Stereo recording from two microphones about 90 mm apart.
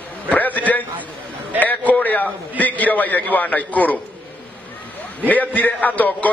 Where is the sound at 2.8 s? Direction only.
20° left (ahead or behind).